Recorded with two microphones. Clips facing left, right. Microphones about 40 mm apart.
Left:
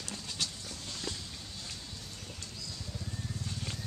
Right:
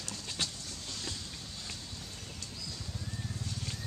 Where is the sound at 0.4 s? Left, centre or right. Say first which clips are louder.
Right 1 dB; right.